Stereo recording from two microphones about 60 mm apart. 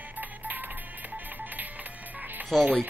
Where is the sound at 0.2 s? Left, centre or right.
Right.